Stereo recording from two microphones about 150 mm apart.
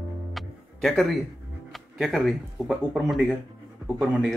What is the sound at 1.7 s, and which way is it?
Speech, centre (ahead or behind).